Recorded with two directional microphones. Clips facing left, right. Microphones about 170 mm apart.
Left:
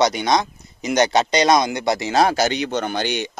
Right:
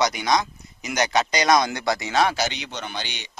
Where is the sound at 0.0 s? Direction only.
30° left (ahead or behind).